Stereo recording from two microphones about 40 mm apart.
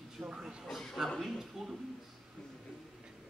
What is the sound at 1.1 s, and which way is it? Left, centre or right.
Speech, centre.